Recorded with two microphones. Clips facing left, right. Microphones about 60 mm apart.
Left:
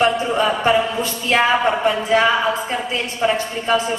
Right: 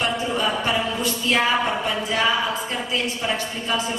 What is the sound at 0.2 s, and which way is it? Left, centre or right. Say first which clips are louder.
A woman's voice: left 5 dB; left.